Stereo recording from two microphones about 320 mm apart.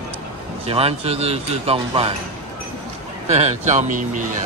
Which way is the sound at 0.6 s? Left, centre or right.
Centre.